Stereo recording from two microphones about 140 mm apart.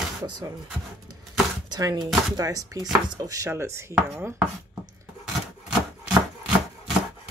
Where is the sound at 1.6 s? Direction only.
30° right (ahead or behind).